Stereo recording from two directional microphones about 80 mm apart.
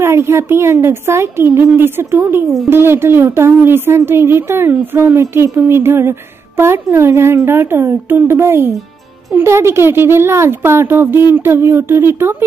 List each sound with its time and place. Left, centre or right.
0.0 s speech: right